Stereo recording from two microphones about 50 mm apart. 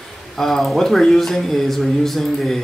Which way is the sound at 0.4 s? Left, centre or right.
Centre.